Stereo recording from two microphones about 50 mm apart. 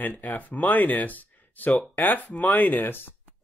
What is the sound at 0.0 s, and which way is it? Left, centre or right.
Speech, left.